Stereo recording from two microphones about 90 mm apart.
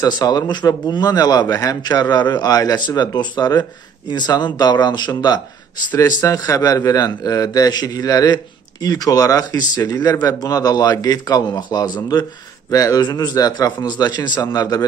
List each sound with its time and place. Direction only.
0.0 s a man's voice: 45° left (ahead or behind)
5.9 s a man's voice: 40° left (ahead or behind)